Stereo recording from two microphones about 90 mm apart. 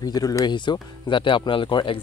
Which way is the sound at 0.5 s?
60° left (ahead or behind).